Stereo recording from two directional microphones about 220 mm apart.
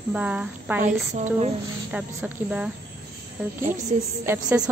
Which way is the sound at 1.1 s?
30° right (ahead or behind).